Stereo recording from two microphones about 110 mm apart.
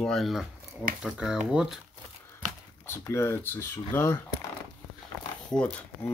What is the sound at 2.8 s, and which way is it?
Speech, 20° left (ahead or behind).